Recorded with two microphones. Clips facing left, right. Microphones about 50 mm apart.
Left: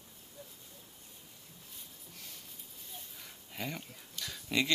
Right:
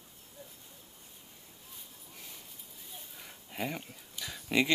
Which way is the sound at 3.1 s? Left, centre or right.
Centre.